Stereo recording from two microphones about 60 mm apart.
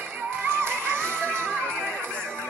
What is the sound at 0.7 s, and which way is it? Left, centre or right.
Music, right.